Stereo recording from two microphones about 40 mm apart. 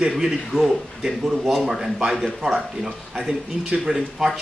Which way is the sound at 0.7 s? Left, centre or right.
Centre.